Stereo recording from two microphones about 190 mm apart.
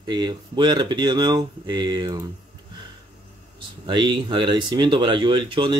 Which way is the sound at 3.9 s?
25° right (ahead or behind).